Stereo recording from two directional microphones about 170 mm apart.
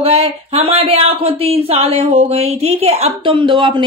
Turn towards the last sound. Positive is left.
turn(degrees=-30)  # may be behind; listen again after turning